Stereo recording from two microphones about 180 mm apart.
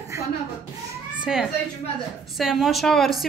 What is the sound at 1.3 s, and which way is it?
A woman's voice, 5° right (ahead or behind).